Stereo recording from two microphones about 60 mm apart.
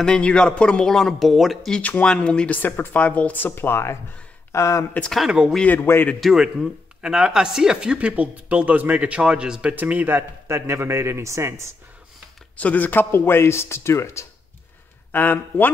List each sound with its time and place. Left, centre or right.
0.0 s speech: centre
1.8 s speech: left
2.0 s speech: centre
2.5 s speech: left
4.5 s speech: left
5.8 s speech: left
6.2 s speech: centre; by 11.6 s right
12.5 s speech: left
13.1 s speech: left
15.1 s speech: left